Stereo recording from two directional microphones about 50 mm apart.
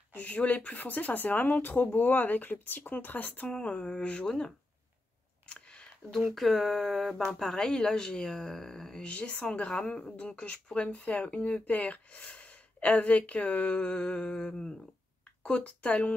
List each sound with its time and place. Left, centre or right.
0.1 s speech: left
3.4 s speech: left
5.5 s a sound: centre
6.3 s speech: centre
9.0 s speech: left